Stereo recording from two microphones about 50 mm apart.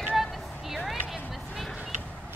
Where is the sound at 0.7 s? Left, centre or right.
Centre.